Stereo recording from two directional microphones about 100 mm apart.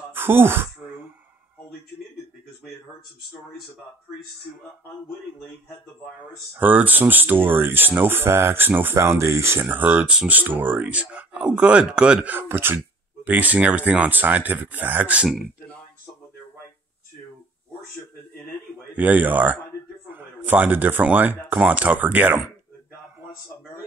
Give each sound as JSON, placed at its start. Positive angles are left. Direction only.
{"t": 0.1, "sound": "speech", "side_deg": -20}
{"t": 6.5, "sound": "speech", "side_deg": -15}
{"t": 18.9, "sound": "speech", "side_deg": -15}